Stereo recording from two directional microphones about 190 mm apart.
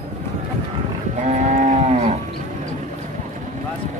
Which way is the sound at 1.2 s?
40° right (ahead or behind).